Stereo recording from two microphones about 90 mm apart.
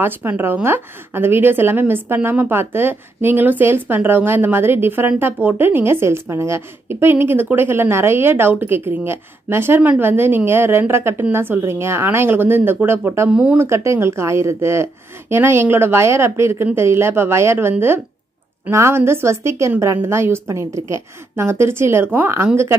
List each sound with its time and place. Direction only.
0.0 s a woman's voice: 25° right (ahead or behind)
13.3 s speech: 15° right (ahead or behind)
13.6 s a woman's voice: 30° right (ahead or behind)